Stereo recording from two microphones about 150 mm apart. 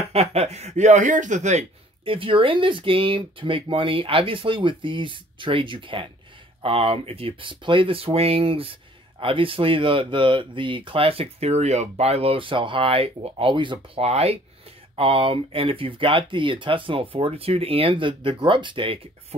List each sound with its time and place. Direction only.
0.1 s speech: 40° right (ahead or behind)